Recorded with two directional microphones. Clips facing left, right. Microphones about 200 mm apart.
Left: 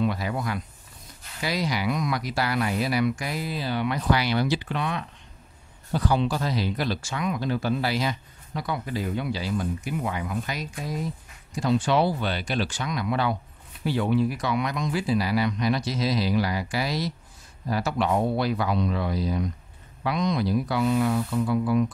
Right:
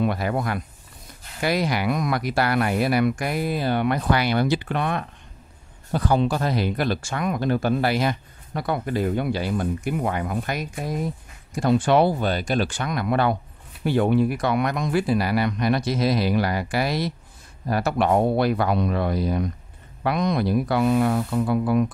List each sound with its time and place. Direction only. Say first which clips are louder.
0.0 s speech: right 3 dB; 55° right (ahead or behind)